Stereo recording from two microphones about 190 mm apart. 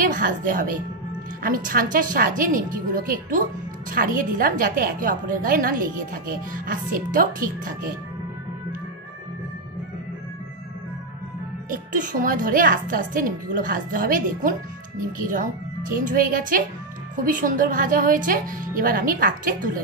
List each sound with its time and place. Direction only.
0.0 s a woman's voice: 45° right (ahead or behind)
11.7 s a woman's voice: 45° right (ahead or behind)